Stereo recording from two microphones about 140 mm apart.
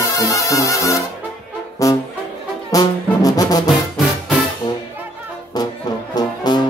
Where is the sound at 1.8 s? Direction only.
25° left (ahead or behind).